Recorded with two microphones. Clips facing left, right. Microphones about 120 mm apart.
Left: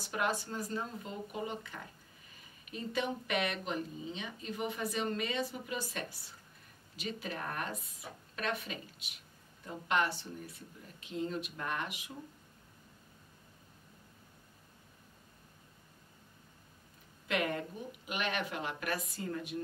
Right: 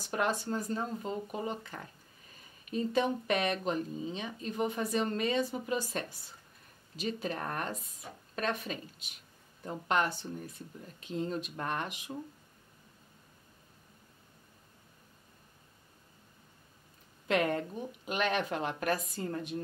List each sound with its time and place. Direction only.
0.1 s speech: 40° right (ahead or behind)
17.3 s speech: 35° right (ahead or behind)